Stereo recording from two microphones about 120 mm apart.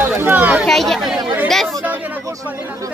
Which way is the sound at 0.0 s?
15° right (ahead or behind).